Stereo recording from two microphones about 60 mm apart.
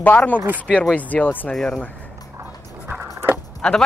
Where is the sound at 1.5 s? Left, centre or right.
Centre.